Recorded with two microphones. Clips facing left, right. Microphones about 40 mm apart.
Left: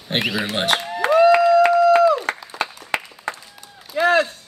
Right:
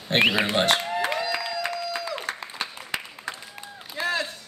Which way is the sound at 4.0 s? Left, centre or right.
Left.